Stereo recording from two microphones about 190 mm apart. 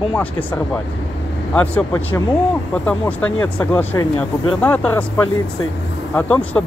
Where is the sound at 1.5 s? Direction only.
15° left (ahead or behind).